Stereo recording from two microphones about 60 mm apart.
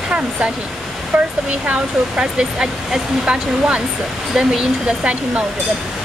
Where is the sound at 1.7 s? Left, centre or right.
Centre.